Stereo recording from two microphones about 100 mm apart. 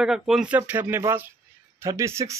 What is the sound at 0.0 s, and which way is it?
Speech, 5° right (ahead or behind).